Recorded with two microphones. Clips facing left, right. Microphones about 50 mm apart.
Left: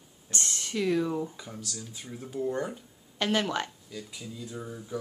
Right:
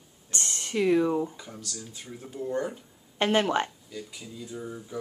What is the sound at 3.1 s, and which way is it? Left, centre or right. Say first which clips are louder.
Speech: right 4 dB; right.